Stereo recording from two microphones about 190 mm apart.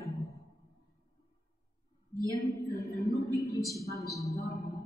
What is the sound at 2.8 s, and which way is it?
A man's voice, 15° left (ahead or behind).